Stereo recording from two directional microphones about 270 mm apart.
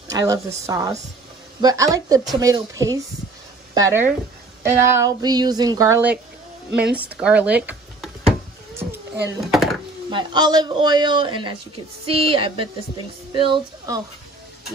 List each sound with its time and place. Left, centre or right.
0.1 s a man's voice: centre
9.2 s a child's voice: centre
10.1 s a man's voice: centre